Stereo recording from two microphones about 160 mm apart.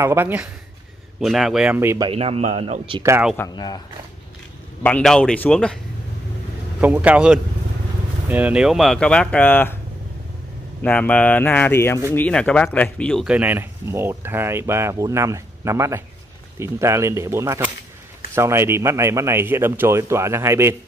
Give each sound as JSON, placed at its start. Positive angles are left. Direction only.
{"t": 0.0, "sound": "speech", "side_deg": -15}
{"t": 1.2, "sound": "speech", "side_deg": 0}
{"t": 2.0, "sound": "a man's voice", "side_deg": -35}
{"t": 3.0, "sound": "speech", "side_deg": -15}
{"t": 3.3, "sound": "speech", "side_deg": 25}
{"t": 4.8, "sound": "speech", "side_deg": 5}
{"t": 6.8, "sound": "speech", "side_deg": -10}
{"t": 10.8, "sound": "speech", "side_deg": 10}
{"t": 13.3, "sound": "speech", "side_deg": -10}